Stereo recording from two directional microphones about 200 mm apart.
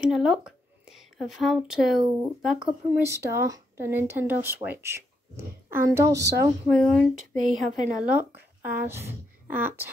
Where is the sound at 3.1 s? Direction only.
15° right (ahead or behind).